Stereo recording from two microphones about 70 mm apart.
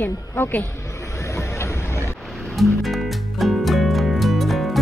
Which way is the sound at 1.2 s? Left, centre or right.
Left.